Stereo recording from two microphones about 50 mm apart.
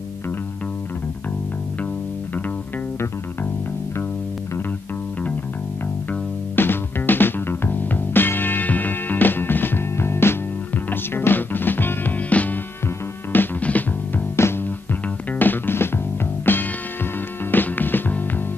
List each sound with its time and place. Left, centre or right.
6.5 s music: left
10.7 s music: left
12.2 s music: left
13.6 s music: left
14.3 s music: left
15.3 s music: left